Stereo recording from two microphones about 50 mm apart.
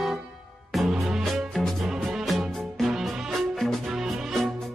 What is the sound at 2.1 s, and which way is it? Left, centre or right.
Music, centre.